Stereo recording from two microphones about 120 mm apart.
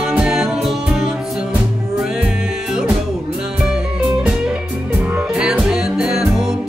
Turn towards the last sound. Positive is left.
turn(degrees=-5)  # may be behind; listen again after turning